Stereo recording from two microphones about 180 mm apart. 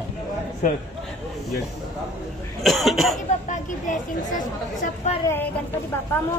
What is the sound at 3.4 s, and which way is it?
Speech, 45° left (ahead or behind).